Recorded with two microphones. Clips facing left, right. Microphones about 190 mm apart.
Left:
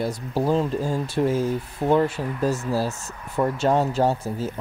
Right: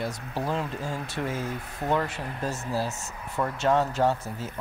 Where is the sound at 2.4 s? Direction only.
35° left (ahead or behind).